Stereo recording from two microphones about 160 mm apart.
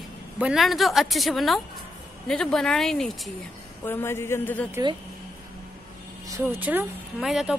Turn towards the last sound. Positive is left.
turn(degrees=0)  # may be behind; listen again after turning